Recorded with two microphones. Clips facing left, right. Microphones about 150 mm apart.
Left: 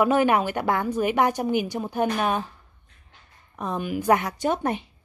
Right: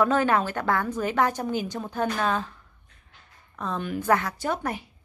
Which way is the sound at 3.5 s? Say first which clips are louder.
Left 2 dB; 15° left (ahead or behind).